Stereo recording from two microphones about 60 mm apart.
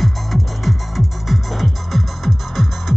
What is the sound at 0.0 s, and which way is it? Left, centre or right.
Music, centre.